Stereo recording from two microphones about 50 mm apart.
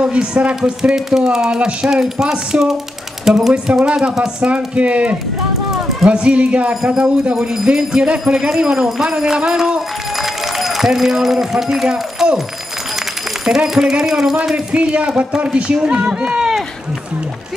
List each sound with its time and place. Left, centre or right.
0.0 s a man's voice: right
6.7 s speech: centre
13.5 s speech: centre
14.4 s a man's voice: right